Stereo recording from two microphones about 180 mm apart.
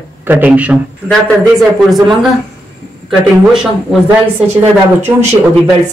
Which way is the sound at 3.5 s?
5° right (ahead or behind).